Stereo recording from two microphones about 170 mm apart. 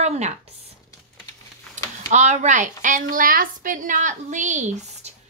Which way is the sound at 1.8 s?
45° right (ahead or behind).